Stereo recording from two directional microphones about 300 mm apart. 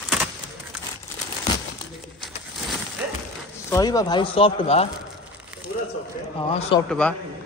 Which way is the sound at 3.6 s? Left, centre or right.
Centre.